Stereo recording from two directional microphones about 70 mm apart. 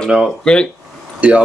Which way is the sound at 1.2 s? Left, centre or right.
Centre.